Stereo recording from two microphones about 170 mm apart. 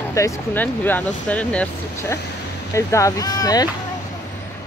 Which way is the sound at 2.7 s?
20° left (ahead or behind).